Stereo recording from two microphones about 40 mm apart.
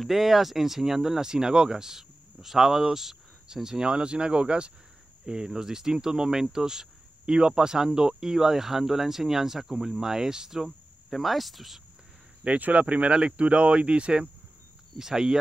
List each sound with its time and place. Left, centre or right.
0.0 s speech: centre
11.1 s speech: centre
12.4 s speech: right
15.0 s speech: centre